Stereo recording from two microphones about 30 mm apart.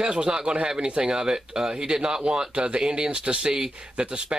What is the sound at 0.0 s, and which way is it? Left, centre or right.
Speech, right.